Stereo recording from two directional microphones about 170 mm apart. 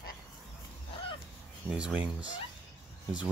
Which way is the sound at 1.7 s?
5° right (ahead or behind).